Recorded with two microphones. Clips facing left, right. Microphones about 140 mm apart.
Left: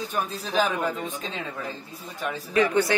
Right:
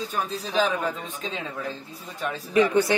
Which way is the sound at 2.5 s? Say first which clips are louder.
Right 2 dB; 20° right (ahead or behind).